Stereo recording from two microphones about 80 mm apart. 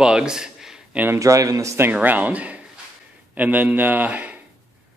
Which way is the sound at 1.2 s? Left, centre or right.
Right.